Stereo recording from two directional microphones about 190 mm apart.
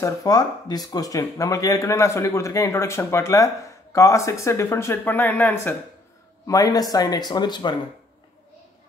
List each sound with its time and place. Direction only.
0.0 s speech: 20° left (ahead or behind)